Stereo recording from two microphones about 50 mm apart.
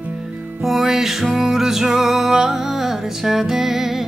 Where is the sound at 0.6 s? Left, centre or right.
Centre.